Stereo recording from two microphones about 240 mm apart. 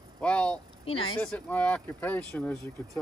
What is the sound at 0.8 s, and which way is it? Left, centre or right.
Speech, left.